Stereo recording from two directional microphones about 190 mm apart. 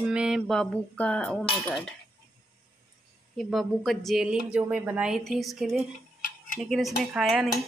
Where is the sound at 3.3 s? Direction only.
Centre (ahead or behind).